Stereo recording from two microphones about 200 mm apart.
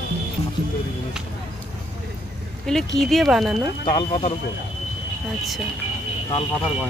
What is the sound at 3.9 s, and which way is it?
Speech, 25° left (ahead or behind).